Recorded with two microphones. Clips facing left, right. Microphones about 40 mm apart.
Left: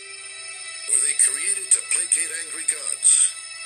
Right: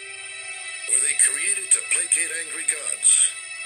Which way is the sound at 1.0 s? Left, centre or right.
Right.